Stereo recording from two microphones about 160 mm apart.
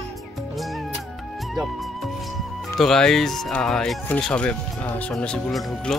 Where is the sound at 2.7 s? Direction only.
Centre (ahead or behind).